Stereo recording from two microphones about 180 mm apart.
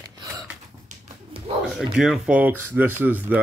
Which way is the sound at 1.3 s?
30° right (ahead or behind).